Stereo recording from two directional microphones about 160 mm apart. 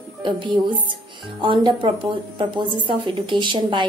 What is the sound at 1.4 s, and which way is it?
Speech, 30° right (ahead or behind).